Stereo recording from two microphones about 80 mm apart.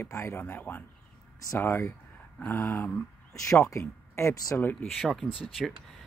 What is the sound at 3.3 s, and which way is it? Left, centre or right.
Speech, left.